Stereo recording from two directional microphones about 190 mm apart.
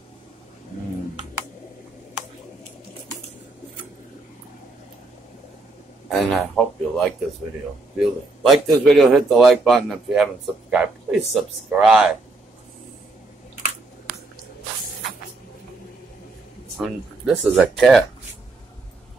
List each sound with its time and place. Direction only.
0.7 s a sound: 40° left (ahead or behind)
6.0 s speech: centre (ahead or behind)
16.8 s speech: centre (ahead or behind)